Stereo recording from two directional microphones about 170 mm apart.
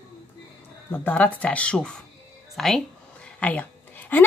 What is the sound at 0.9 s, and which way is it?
A woman's voice, 10° left (ahead or behind).